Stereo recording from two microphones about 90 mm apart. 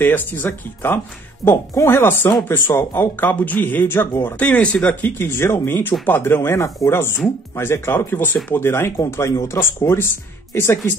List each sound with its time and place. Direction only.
0.0 s speech: 20° left (ahead or behind)
5.2 s speech: 30° left (ahead or behind)